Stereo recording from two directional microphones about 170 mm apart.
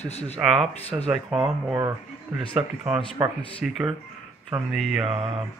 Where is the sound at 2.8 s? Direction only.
5° right (ahead or behind).